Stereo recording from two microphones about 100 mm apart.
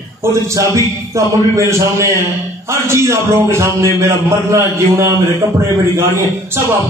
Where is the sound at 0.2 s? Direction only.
30° right (ahead or behind).